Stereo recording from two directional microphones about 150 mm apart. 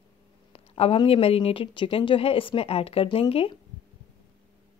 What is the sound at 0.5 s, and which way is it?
Speech, 40° left (ahead or behind).